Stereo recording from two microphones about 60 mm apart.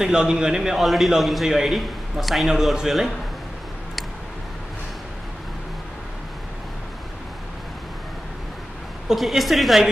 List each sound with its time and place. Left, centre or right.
0.0 s a man's voice: centre
9.1 s a man's voice: centre